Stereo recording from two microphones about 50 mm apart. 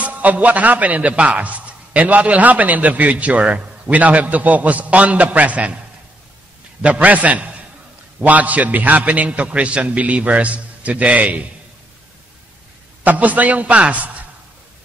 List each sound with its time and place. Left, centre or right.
0.0 s speech: right
6.8 s a man's voice: right
13.0 s a man's voice: right